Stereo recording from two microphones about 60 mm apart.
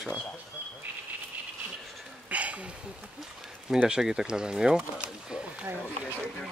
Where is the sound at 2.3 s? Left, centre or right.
Right.